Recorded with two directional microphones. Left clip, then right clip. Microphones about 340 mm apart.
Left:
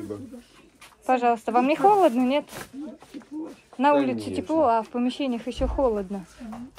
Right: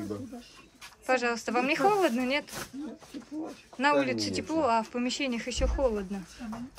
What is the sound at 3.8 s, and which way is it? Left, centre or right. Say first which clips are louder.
Speech: left 5 dB; centre.